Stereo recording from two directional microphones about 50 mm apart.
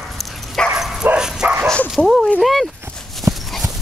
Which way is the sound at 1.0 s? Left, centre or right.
Centre.